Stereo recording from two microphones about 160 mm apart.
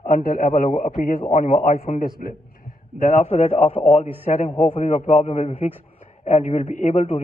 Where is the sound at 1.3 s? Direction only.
50° left (ahead or behind).